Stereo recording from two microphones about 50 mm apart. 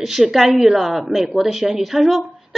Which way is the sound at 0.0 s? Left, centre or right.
Centre.